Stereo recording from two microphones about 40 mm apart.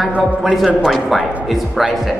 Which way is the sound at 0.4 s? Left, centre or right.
Centre.